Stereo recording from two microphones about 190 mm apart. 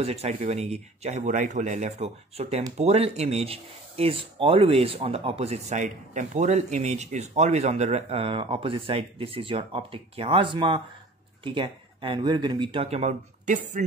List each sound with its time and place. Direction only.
0.0 s speech: 35° right (ahead or behind)